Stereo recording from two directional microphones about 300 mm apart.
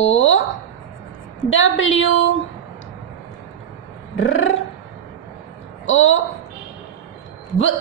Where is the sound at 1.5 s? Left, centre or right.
Left.